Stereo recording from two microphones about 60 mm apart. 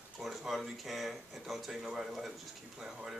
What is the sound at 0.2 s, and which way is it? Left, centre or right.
Speech, centre.